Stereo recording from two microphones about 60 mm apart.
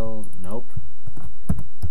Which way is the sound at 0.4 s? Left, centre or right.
Centre.